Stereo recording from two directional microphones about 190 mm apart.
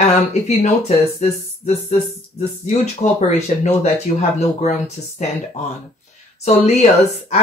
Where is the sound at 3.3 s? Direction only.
35° left (ahead or behind).